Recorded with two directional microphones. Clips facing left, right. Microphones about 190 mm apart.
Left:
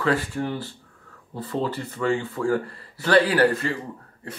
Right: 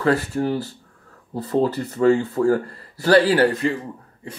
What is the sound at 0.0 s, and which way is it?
Speech, 40° right (ahead or behind).